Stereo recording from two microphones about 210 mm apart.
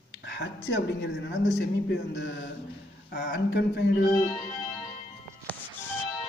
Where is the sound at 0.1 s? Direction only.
60° left (ahead or behind).